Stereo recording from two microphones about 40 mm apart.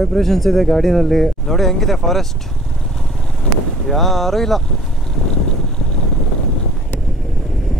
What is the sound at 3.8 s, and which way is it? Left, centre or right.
Speech, centre.